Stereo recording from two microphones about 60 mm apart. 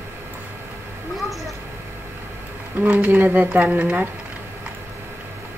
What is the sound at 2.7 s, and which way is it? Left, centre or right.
Speech, right.